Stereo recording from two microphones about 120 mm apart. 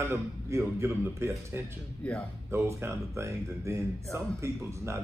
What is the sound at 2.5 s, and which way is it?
A man's voice, 20° right (ahead or behind).